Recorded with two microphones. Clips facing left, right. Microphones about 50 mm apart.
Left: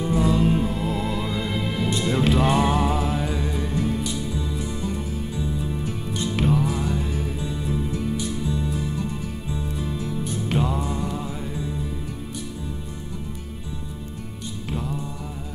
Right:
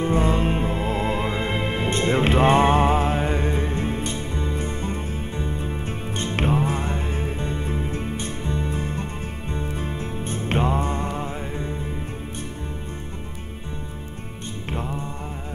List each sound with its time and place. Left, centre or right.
0.0 s music: right
14.7 s music: right